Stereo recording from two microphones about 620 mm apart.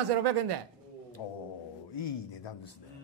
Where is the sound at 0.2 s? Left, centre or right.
Right.